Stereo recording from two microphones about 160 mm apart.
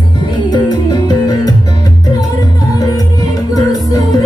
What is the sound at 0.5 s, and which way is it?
Music, 25° left (ahead or behind).